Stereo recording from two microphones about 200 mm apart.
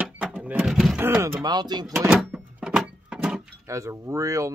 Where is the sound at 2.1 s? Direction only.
5° right (ahead or behind).